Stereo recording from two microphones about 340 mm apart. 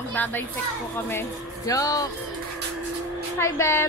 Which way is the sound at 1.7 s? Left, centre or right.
Centre.